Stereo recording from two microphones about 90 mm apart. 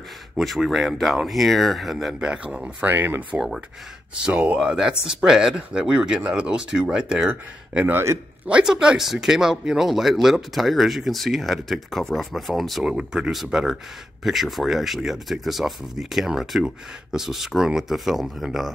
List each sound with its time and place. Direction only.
0.4 s speech: centre (ahead or behind); by 3.3 s 20° right (ahead or behind)
3.3 s speech: 5° right (ahead or behind)
7.9 s speech: 30° right (ahead or behind)
8.5 s speech: 10° right (ahead or behind)